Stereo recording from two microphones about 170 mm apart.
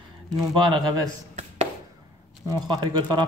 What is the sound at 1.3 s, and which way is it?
Chopping, 40° right (ahead or behind).